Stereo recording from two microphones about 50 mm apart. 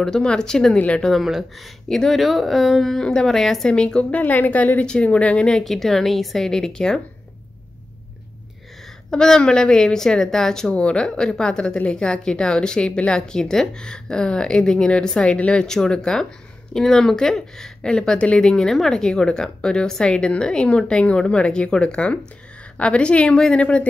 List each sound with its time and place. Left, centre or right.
0.0 s speech: centre
0.7 s a woman's voice: left
1.2 s speech: centre
1.9 s a woman's voice: centre
2.8 s speech: centre
3.7 s speech: centre
4.2 s a woman's voice: left
5.6 s a woman's voice: centre
9.1 s speech: centre
10.7 s a woman's voice: left
15.6 s speech: centre
18.4 s a woman's voice: centre